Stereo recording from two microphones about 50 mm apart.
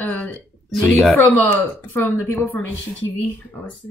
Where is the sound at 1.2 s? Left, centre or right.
Left.